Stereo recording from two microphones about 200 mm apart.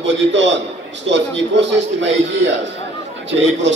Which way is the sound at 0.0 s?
65° right (ahead or behind).